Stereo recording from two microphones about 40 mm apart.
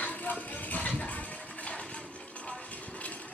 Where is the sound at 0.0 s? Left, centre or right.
Left.